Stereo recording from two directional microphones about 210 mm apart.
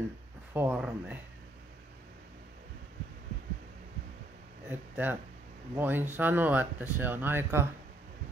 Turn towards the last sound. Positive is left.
turn(degrees=-10)  # may be behind; listen again after turning